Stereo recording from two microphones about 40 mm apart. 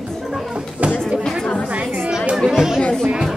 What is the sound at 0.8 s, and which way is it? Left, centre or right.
Chatter, right.